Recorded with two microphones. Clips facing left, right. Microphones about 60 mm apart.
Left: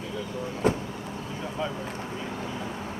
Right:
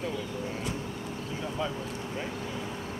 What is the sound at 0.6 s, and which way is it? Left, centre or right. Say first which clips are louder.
Vehicle: left 16 dB; left.